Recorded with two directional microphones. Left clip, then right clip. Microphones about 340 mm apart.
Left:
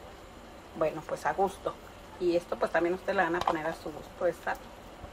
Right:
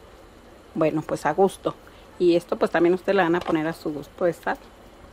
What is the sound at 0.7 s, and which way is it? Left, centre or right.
Speech, right.